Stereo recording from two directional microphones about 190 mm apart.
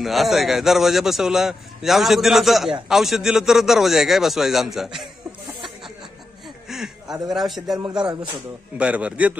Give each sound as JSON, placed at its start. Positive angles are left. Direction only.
{"t": 0.0, "sound": "a man's voice", "side_deg": 0}
{"t": 6.7, "sound": "a sound", "side_deg": 0}
{"t": 7.2, "sound": "a man's voice", "side_deg": 0}
{"t": 7.9, "sound": "speech", "side_deg": -20}
{"t": 8.7, "sound": "a man's voice", "side_deg": -5}